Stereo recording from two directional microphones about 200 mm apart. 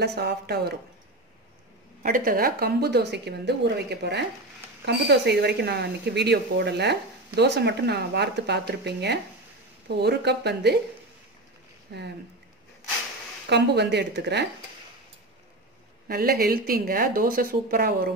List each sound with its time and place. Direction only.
0.0 s a woman's voice: 55° right (ahead or behind)
2.0 s a woman's voice: 45° right (ahead or behind)
11.9 s speech: 55° right (ahead or behind)
13.5 s a woman's voice: 55° right (ahead or behind)
16.1 s speech: 50° right (ahead or behind)